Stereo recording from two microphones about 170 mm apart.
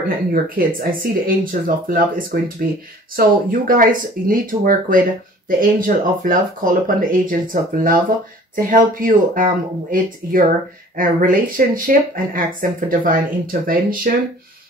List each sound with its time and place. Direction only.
0.3 s speech: 55° right (ahead or behind)